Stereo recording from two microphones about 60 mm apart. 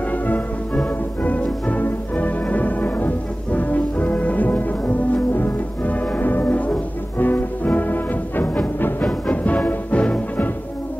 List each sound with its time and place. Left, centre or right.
1.2 s music: left
3.5 s brass instrument: left
7.2 s music: left